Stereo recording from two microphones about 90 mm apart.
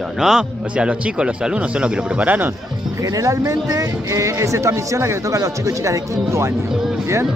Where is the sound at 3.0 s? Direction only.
40° right (ahead or behind).